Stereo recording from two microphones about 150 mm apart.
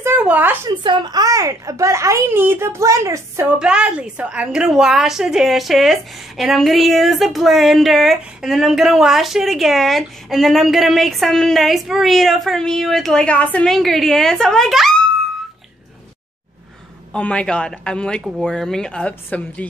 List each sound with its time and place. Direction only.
0.0 s a sound: 15° right (ahead or behind)
0.7 s a child's voice: 30° right (ahead or behind)
3.5 s a woman's voice: 5° right (ahead or behind)
17.1 s a woman's voice: 10° left (ahead or behind)